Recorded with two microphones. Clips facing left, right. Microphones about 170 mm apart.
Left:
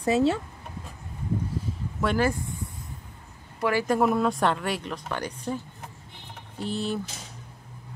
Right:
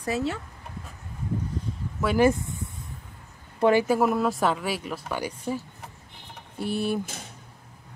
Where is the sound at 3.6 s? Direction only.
20° right (ahead or behind).